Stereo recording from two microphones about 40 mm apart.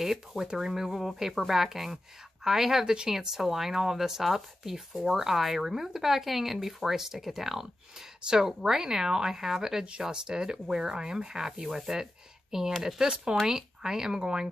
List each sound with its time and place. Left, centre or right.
0.0 s speech: centre